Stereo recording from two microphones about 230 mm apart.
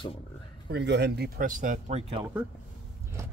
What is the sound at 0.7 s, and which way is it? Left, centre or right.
Speech, right.